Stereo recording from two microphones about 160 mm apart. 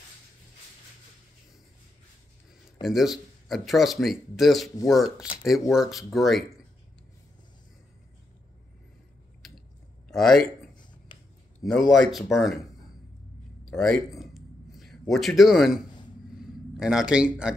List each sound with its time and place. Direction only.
2.8 s speech: centre (ahead or behind)
10.1 s speech: 5° left (ahead or behind)
11.1 s a sound: 30° left (ahead or behind)
11.6 s speech: centre (ahead or behind)
13.7 s a sound: centre (ahead or behind)
16.3 s speech: 5° right (ahead or behind)